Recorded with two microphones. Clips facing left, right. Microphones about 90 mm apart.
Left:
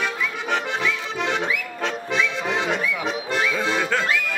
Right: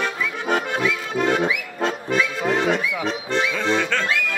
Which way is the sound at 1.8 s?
Centre (ahead or behind).